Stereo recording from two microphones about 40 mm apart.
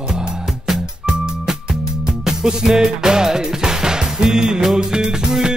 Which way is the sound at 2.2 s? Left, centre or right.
Centre.